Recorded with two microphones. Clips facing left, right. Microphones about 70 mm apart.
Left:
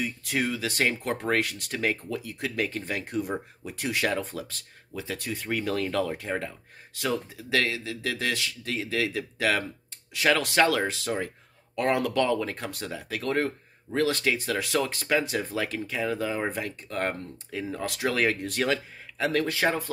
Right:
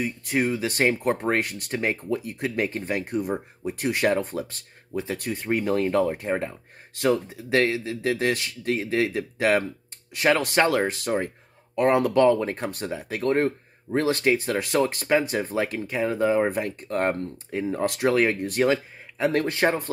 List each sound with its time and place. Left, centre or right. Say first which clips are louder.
0.0 s speech: right 4 dB; right
19.3 s speech: right 2 dB; right